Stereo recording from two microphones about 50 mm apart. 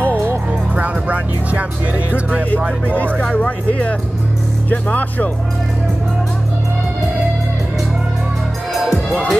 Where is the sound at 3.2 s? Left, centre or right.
Left.